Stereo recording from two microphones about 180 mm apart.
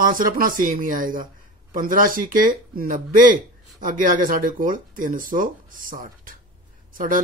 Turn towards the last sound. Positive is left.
turn(degrees=-50)  # may be behind; listen again after turning